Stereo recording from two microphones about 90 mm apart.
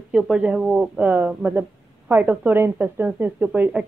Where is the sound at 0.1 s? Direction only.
10° right (ahead or behind).